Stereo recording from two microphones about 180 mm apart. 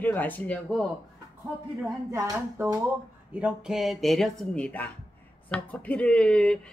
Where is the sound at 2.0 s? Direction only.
15° right (ahead or behind).